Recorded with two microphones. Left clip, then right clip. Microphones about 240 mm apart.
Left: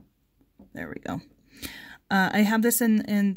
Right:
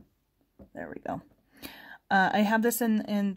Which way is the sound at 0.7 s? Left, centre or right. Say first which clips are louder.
Left 1 dB; left.